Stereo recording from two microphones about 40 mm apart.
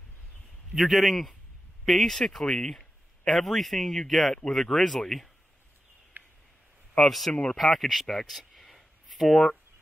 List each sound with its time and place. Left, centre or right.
0.7 s speech: centre
6.2 s a sound: right
7.0 s speech: centre